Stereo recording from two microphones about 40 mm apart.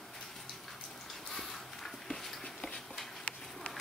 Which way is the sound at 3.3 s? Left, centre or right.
Left.